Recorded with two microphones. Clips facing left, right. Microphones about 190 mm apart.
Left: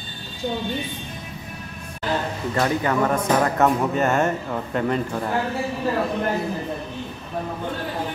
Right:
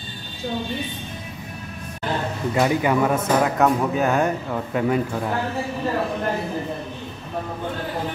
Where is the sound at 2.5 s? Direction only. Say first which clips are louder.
Right 2 dB; 10° right (ahead or behind).